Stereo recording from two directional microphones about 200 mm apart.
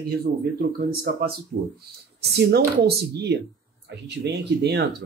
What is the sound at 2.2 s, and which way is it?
Speech, 55° right (ahead or behind).